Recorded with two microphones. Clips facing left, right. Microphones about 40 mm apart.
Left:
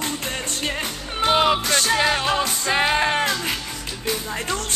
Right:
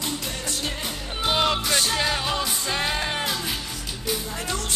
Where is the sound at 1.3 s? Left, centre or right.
Centre; by 3.2 s left.